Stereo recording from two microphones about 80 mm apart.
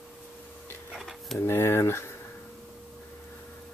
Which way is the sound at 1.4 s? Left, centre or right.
Left.